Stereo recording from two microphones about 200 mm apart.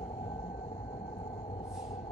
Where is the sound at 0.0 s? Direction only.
30° left (ahead or behind).